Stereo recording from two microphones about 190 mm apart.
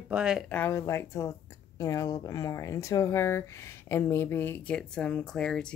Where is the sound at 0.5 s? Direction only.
10° left (ahead or behind).